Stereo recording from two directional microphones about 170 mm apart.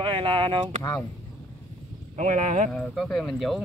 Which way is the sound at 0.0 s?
30° right (ahead or behind).